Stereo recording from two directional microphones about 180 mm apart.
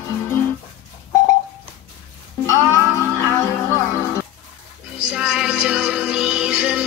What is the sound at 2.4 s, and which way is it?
Music, 15° left (ahead or behind).